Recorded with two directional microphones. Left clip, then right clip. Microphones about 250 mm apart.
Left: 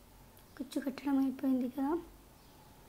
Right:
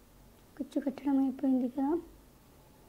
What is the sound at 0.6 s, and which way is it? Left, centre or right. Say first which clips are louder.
Speech: right 4 dB; centre.